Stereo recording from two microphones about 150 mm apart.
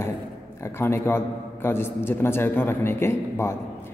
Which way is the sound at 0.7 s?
15° left (ahead or behind).